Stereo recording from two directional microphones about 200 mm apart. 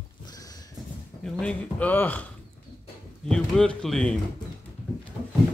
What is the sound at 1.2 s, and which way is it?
Speech, 5° left (ahead or behind).